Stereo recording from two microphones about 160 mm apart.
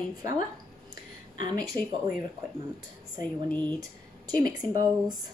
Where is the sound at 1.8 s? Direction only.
25° right (ahead or behind).